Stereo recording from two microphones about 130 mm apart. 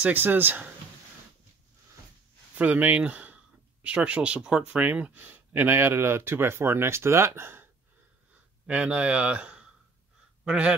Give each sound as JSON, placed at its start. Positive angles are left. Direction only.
{"t": 0.0, "sound": "speech", "side_deg": -15}
{"t": 2.5, "sound": "speech", "side_deg": -10}
{"t": 8.6, "sound": "speech", "side_deg": -10}